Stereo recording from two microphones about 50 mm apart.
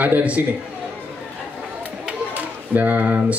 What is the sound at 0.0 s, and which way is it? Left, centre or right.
Speech, right.